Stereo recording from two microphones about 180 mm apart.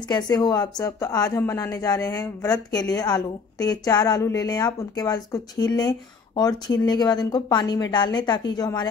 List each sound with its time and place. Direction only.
0.1 s a woman's voice: 25° left (ahead or behind)